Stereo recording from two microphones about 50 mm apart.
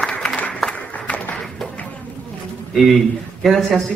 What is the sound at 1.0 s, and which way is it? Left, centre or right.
Music, left.